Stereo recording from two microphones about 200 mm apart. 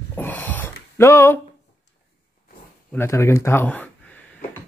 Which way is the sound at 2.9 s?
10° left (ahead or behind).